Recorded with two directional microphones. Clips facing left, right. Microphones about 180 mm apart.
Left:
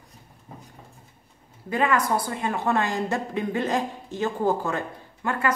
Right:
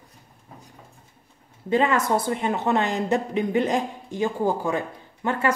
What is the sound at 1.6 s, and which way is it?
Speech, 25° right (ahead or behind).